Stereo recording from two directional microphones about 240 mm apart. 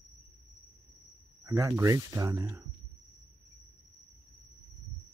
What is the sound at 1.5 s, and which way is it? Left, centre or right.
Speech, centre.